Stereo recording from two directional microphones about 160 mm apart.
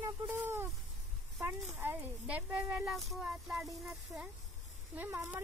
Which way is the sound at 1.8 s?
10° right (ahead or behind).